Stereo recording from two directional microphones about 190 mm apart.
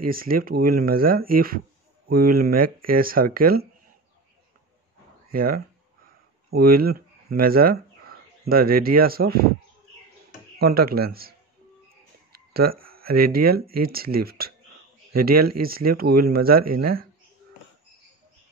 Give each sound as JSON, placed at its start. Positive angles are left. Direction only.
{"t": 0.1, "sound": "speech", "side_deg": -50}
{"t": 5.3, "sound": "speech", "side_deg": -50}
{"t": 10.6, "sound": "speech", "side_deg": -55}